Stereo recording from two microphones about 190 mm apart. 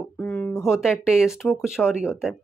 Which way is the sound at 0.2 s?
5° left (ahead or behind).